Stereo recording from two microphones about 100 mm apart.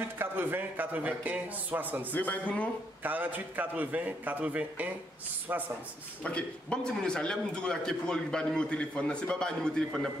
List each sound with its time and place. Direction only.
0.2 s a man's voice: 20° right (ahead or behind)
2.1 s a man's voice: 15° left (ahead or behind)
3.0 s a man's voice: 20° right (ahead or behind)
6.2 s a man's voice: 10° left (ahead or behind)